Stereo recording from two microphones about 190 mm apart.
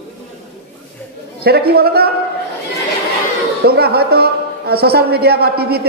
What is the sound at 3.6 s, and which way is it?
A man's voice, 55° right (ahead or behind).